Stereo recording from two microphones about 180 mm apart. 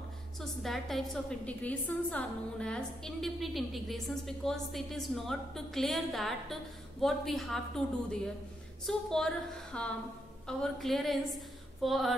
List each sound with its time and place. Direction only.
0.4 s a woman's voice: centre (ahead or behind)